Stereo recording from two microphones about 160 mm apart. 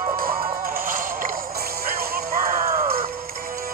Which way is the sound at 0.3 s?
35° right (ahead or behind).